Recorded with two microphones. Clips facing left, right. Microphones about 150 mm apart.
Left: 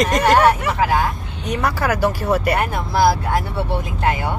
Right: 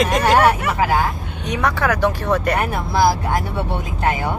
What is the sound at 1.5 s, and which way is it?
Speech, 5° left (ahead or behind).